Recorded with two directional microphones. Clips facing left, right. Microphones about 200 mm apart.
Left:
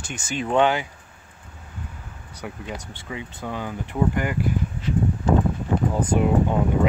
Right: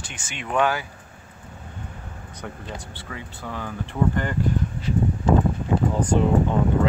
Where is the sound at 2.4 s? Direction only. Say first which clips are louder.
Left 2 dB; 10° left (ahead or behind).